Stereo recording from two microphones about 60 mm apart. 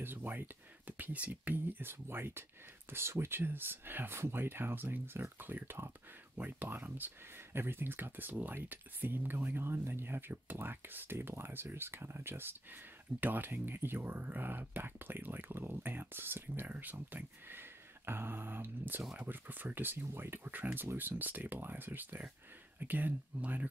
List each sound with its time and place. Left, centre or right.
0.0 s speech: right
6.3 s speech: right